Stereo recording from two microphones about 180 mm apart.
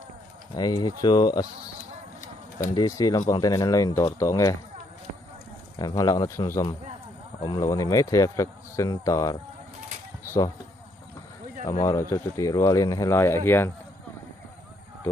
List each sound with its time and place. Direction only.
0.6 s speech: 20° left (ahead or behind)
2.7 s speech: 20° left (ahead or behind)
5.8 s speech: 20° left (ahead or behind)
11.8 s speech: 20° left (ahead or behind)